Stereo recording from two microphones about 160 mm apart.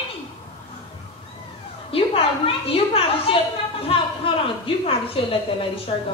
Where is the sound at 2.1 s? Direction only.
35° left (ahead or behind).